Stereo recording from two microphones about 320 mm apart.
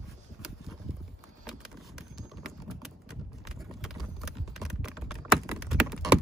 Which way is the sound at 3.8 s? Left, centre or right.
Centre.